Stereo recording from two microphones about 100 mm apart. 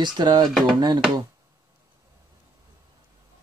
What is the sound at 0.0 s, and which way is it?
Speech, 45° right (ahead or behind).